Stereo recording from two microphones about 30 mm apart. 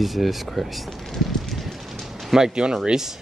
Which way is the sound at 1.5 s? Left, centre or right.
Centre.